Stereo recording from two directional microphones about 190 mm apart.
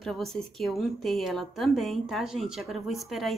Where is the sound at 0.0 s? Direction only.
Centre (ahead or behind).